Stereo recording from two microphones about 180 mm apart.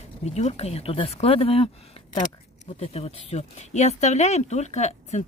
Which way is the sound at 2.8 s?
35° left (ahead or behind).